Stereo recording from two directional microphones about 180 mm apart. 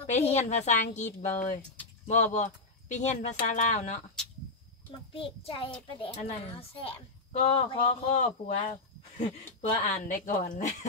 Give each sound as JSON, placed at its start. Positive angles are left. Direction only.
{"t": 0.0, "sound": "speech", "side_deg": 35}
{"t": 5.1, "sound": "speech", "side_deg": 30}